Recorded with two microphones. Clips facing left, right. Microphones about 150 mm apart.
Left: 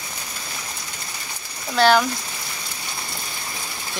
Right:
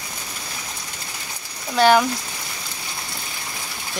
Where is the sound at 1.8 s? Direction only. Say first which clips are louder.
Right 1 dB; 15° right (ahead or behind).